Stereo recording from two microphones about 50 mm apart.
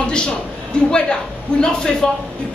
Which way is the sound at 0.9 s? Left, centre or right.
Centre.